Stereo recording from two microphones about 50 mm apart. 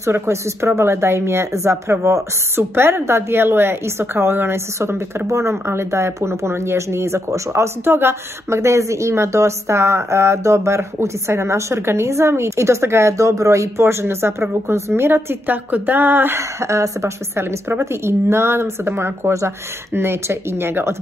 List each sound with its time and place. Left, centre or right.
0.0 s speech: right
2.5 s a woman's voice: right
5.3 s a woman's voice: right
16.3 s speech: right
17.4 s a woman's voice: right